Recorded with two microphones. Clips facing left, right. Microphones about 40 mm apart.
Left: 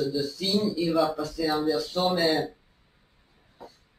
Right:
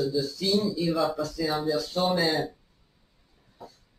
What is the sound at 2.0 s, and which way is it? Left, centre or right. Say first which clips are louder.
Mantra: left 1 dB; centre.